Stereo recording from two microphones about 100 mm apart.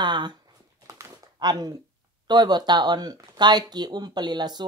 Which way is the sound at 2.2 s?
45° right (ahead or behind).